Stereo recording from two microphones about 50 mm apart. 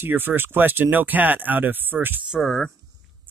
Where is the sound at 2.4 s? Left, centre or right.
Centre.